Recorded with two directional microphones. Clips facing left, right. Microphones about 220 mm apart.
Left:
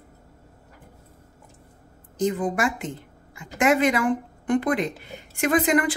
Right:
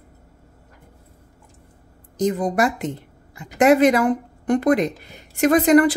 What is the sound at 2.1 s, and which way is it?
A woman's voice, 40° right (ahead or behind).